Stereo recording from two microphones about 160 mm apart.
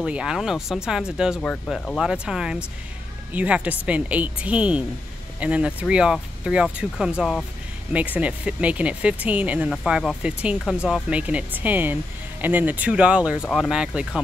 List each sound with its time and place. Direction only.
0.0 s speech: 5° right (ahead or behind)
1.5 s speech: 5° left (ahead or behind)
2.0 s speech: 5° right (ahead or behind)